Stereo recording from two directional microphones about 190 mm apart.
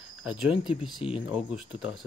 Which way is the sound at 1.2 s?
5° right (ahead or behind).